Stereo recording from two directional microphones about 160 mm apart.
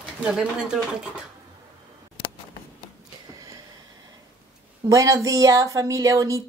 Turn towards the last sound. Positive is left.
turn(degrees=-20)  # may be behind; listen again after turning